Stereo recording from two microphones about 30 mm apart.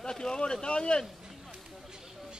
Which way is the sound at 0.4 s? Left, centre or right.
Left.